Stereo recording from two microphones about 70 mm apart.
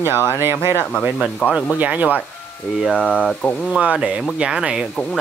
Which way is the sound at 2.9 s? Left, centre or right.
Left.